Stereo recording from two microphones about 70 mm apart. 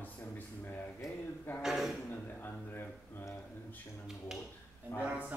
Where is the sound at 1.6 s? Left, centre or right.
Centre.